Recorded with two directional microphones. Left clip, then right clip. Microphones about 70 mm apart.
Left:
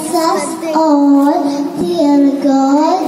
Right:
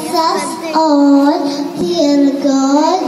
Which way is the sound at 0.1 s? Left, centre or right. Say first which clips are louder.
Even; right.